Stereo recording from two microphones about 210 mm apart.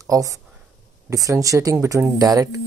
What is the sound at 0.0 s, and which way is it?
Speech, 15° right (ahead or behind).